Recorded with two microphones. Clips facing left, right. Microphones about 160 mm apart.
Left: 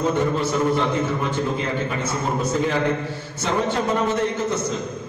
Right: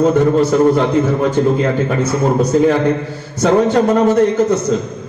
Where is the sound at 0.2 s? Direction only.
40° right (ahead or behind).